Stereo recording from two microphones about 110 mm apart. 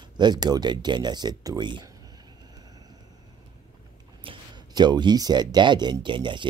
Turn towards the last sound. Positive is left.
turn(degrees=-45)  # may be behind; listen again after turning